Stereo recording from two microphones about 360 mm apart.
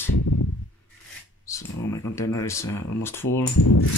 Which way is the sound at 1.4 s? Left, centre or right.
Centre.